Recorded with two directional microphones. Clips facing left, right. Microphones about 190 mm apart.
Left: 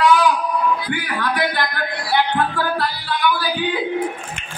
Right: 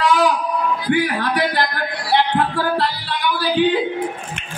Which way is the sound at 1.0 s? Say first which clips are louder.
Right 2 dB; 35° right (ahead or behind).